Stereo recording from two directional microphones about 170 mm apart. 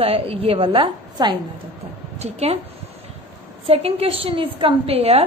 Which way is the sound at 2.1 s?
40° right (ahead or behind).